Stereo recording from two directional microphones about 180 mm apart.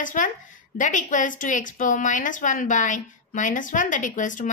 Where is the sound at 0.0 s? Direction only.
45° left (ahead or behind).